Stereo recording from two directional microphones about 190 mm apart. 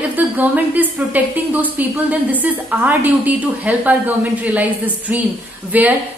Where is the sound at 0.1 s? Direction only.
10° right (ahead or behind).